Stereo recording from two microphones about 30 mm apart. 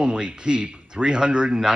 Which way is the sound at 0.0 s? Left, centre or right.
Right.